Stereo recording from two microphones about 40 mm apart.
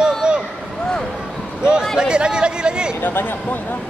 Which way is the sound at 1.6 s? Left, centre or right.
Centre.